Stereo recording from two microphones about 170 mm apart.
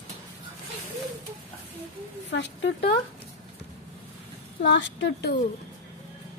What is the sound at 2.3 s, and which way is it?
Speech, 90° left.